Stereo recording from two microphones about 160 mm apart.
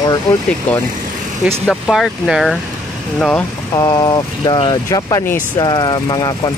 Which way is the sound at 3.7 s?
25° left (ahead or behind).